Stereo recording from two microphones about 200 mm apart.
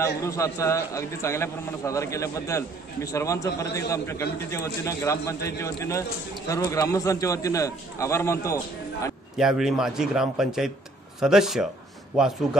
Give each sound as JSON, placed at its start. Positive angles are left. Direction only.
{"t": 0.0, "sound": "a man's voice", "side_deg": 15}
{"t": 9.4, "sound": "speech", "side_deg": 0}